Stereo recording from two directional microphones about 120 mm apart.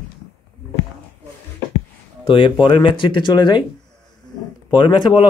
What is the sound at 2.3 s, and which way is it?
Speech, 45° left (ahead or behind).